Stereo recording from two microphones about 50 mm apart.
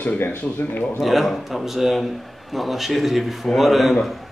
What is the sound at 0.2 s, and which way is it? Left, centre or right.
Speech, left.